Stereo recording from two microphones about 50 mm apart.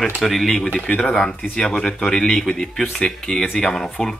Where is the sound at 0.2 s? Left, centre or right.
Centre.